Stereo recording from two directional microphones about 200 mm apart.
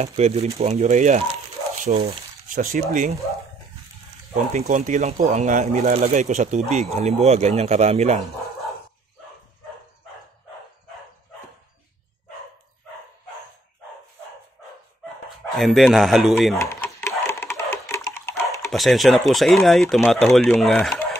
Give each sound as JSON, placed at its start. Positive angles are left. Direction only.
{"t": 0.0, "sound": "speech", "side_deg": -30}
{"t": 4.5, "sound": "speech", "side_deg": -40}
{"t": 15.2, "sound": "speech", "side_deg": 0}
{"t": 16.5, "sound": "a sound", "side_deg": 15}
{"t": 18.7, "sound": "speech", "side_deg": 0}